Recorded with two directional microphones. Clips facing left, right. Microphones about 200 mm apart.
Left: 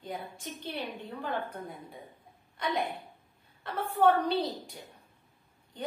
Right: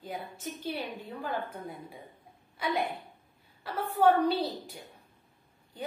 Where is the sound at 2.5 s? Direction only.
5° right (ahead or behind).